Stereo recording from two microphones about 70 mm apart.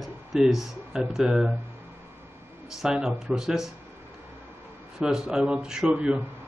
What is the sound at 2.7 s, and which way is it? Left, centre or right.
Speech, centre.